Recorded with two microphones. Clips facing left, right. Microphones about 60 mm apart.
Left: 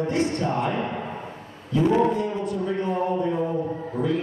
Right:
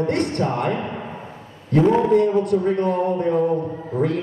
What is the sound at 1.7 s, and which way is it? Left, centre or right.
Mantra, right.